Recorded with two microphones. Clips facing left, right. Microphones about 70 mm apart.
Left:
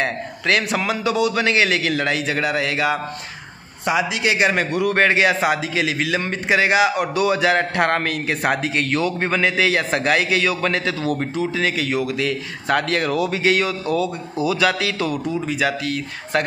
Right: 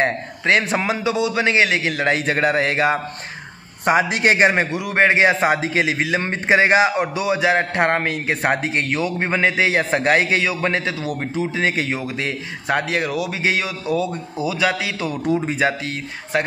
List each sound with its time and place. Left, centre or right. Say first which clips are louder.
0.0 s a man's voice: right 2 dB; right
2.0 s a man's voice: right 3 dB; right
4.5 s a man's voice: left 1 dB; right
11.3 s a man's voice: right 1 dB; right
12.6 s a man's voice: left 1 dB; centre
15.4 s a man's voice: right 1 dB; right